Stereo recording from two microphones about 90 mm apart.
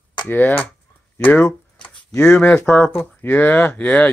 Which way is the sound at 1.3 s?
20° left (ahead or behind).